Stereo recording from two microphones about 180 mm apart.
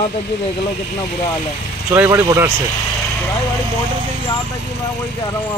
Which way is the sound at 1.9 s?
15° right (ahead or behind).